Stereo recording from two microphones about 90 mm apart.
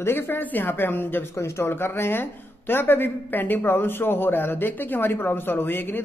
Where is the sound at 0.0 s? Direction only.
25° left (ahead or behind).